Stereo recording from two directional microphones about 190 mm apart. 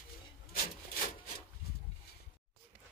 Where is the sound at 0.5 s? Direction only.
50° left (ahead or behind).